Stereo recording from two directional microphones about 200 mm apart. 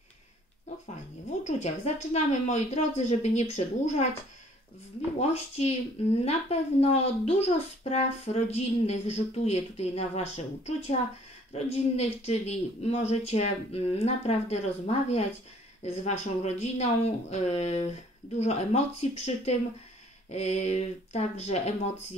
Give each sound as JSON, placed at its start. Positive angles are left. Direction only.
{"t": 1.6, "sound": "a child's voice", "side_deg": 35}
{"t": 5.2, "sound": "a child's voice", "side_deg": 35}
{"t": 11.5, "sound": "a child's voice", "side_deg": 30}